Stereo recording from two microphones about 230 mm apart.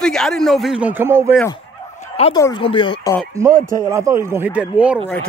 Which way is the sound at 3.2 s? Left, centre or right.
Centre.